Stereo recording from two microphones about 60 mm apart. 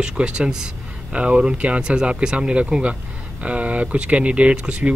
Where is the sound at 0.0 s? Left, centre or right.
Centre.